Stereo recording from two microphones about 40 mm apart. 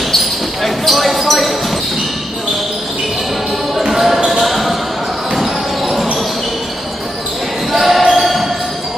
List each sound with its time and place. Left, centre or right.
0.7 s basketball bounce: centre
3.7 s basketball bounce: centre
7.7 s basketball bounce: centre